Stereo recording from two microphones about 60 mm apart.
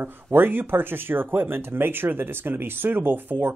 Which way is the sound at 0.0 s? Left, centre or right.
Right.